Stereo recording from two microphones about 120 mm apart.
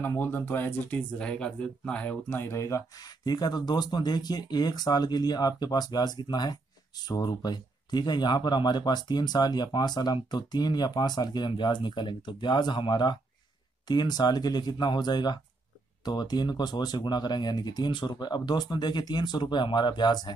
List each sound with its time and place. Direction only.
0.0 s speech: 15° left (ahead or behind)
3.3 s speech: 35° left (ahead or behind)